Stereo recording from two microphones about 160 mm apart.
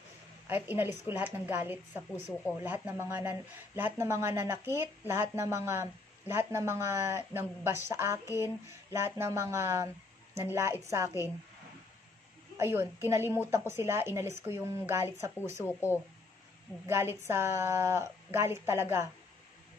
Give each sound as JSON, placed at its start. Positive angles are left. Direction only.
{"t": 0.5, "sound": "speech", "side_deg": -10}
{"t": 12.5, "sound": "speech", "side_deg": -15}
{"t": 15.6, "sound": "speech", "side_deg": 15}
{"t": 16.8, "sound": "speech", "side_deg": -15}